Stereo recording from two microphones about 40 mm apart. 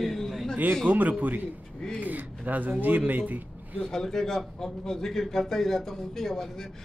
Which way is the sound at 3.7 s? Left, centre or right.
Centre.